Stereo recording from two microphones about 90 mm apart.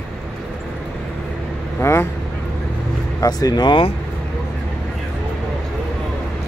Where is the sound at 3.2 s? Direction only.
45° left (ahead or behind).